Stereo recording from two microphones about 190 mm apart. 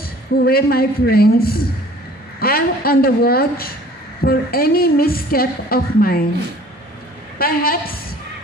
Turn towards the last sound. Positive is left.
turn(degrees=50)  # may be behind; listen again after turning